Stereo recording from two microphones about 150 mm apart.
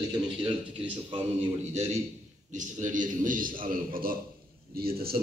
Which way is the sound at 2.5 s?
60° right (ahead or behind).